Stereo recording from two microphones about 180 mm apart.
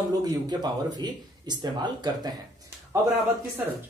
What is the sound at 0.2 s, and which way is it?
Speech, 25° right (ahead or behind).